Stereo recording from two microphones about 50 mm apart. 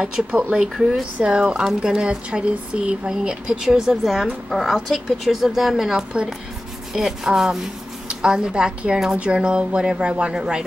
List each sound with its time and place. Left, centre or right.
0.0 s speech: right
0.7 s speech: centre
1.2 s speech: centre